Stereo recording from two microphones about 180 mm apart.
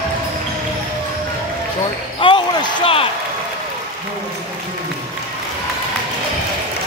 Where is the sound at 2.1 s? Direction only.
30° left (ahead or behind).